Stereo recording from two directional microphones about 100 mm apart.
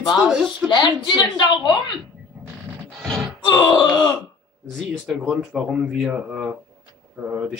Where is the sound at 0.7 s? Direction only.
50° left (ahead or behind).